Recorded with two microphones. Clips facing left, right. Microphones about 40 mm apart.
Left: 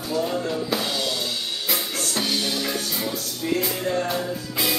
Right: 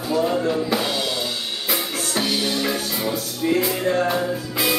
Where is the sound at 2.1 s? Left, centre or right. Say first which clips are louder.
Right 3 dB; centre.